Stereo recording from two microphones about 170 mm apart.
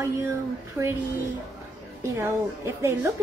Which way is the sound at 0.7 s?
15° right (ahead or behind).